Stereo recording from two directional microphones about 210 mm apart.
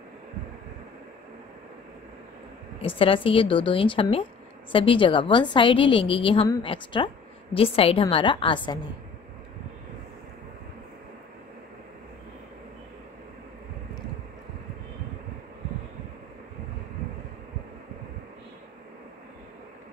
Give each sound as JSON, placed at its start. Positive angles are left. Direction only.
{"t": 2.8, "sound": "a woman's voice", "side_deg": 25}